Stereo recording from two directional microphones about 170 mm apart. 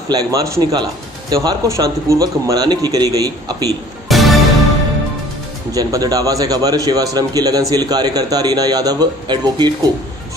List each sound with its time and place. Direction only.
0.1 s speech: 20° right (ahead or behind)
4.1 s music: centre (ahead or behind)
5.7 s speech: 20° right (ahead or behind)